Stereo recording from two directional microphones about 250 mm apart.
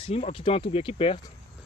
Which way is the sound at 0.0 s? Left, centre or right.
Left.